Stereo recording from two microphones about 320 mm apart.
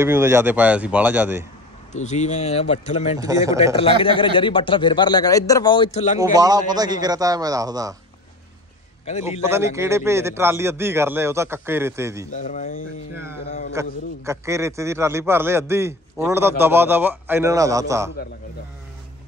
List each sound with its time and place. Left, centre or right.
0.0 s speech: centre
1.9 s speech: left
3.2 s a man's voice: centre
3.7 s a man's voice: centre
6.1 s a man's voice: centre
9.4 s a man's voice: centre
12.4 s speech: left
13.1 s a man's voice: centre